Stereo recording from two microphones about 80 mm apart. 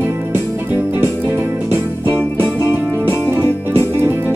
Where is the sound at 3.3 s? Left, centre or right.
Right.